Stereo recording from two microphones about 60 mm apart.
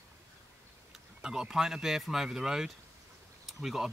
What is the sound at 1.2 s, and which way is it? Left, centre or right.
Speech, centre.